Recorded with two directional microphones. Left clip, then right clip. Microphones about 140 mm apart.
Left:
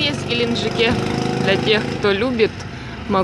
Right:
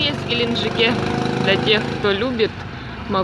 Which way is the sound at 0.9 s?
25° left (ahead or behind).